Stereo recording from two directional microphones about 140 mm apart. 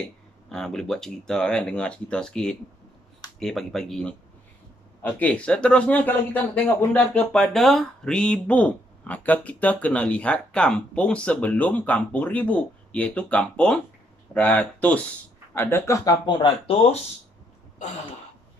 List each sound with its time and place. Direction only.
0.5 s speech: 5° left (ahead or behind); by 16.2 s 20° left (ahead or behind)
16.3 s speech: 40° left (ahead or behind)